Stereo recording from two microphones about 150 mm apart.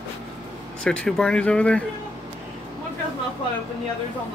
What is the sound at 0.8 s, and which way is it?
Speech, 5° left (ahead or behind).